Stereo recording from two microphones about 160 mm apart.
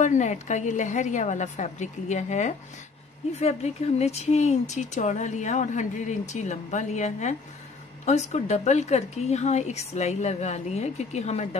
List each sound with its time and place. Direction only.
0.0 s speech: 50° left (ahead or behind)